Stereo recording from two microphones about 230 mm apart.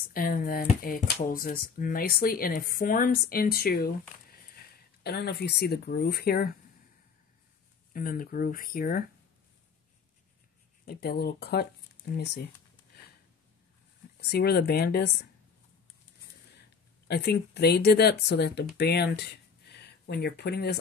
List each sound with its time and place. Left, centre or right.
0.1 s speech: left
5.0 s speech: left
7.9 s speech: left
10.9 s speech: left
14.3 s speech: left
17.1 s speech: left